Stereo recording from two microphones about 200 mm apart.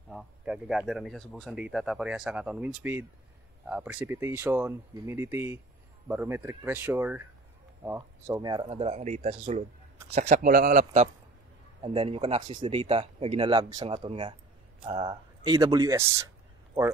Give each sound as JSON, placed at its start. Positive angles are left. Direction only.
{"t": 0.1, "sound": "speech", "side_deg": 0}
{"t": 8.6, "sound": "speech", "side_deg": -30}
{"t": 10.4, "sound": "speech", "side_deg": -45}
{"t": 11.8, "sound": "speech", "side_deg": -25}